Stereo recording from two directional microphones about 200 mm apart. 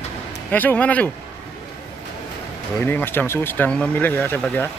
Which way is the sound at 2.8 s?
10° left (ahead or behind).